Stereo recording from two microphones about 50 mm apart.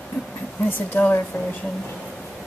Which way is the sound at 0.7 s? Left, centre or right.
Left.